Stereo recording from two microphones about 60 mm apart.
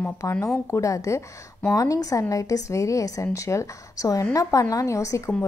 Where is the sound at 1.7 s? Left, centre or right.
Left.